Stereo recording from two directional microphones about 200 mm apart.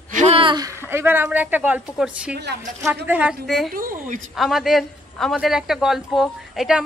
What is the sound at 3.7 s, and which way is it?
Speech, 45° right (ahead or behind).